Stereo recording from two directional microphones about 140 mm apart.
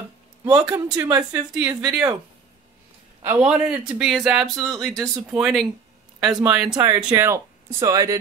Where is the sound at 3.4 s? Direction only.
5° right (ahead or behind).